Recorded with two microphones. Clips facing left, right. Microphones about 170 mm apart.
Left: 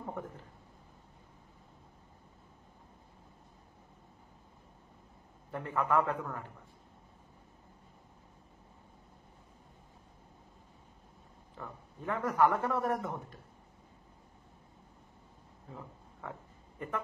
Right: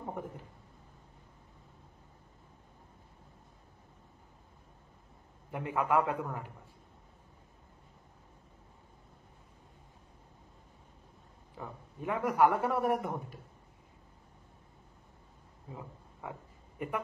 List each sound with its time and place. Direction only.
5.5 s a man's voice: 15° right (ahead or behind)
11.5 s a man's voice: 15° right (ahead or behind)
15.7 s a sound: 15° right (ahead or behind)